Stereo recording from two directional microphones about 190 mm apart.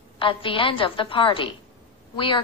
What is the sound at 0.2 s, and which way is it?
A woman's voice, 25° left (ahead or behind).